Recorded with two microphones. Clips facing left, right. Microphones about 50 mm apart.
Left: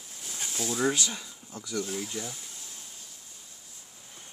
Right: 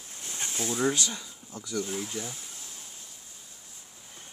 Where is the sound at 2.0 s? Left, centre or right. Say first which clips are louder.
Even; right.